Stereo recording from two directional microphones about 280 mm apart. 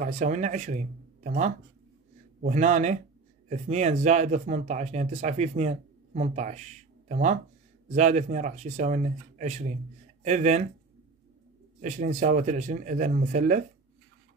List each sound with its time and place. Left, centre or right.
0.0 s speech: right
11.8 s speech: right